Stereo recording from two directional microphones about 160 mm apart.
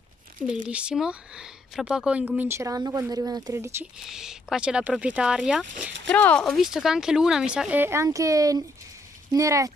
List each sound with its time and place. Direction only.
0.7 s speech: 5° right (ahead or behind)
4.0 s speech: 5° right (ahead or behind)
6.0 s speech: 10° left (ahead or behind); by 9.7 s 20° right (ahead or behind)